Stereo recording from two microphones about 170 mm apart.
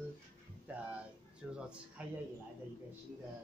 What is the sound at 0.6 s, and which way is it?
Speech, 10° right (ahead or behind).